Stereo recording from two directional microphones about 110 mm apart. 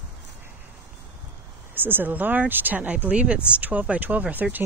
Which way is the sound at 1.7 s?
20° right (ahead or behind).